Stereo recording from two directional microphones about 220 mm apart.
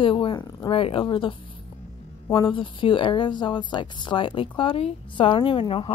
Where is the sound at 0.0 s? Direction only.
25° left (ahead or behind).